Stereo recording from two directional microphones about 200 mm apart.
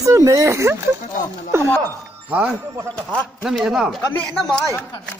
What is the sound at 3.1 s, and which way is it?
Speech, centre (ahead or behind).